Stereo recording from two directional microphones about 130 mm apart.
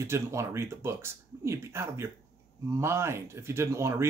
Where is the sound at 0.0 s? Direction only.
20° right (ahead or behind).